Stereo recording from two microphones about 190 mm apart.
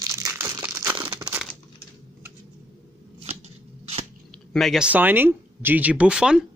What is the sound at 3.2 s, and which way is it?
Shuffling cards, 35° right (ahead or behind).